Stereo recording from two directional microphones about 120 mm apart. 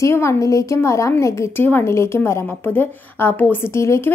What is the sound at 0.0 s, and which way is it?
A woman's voice, 25° left (ahead or behind).